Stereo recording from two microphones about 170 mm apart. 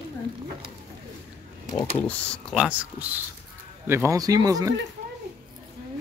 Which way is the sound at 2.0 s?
5° left (ahead or behind).